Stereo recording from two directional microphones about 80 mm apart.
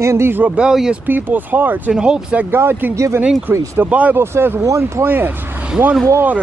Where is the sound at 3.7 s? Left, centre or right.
Centre.